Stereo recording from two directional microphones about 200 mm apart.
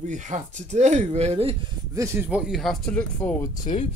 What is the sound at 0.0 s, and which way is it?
Speech, 35° right (ahead or behind).